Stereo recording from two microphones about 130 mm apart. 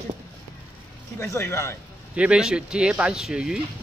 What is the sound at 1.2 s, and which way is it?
Speech, 20° left (ahead or behind).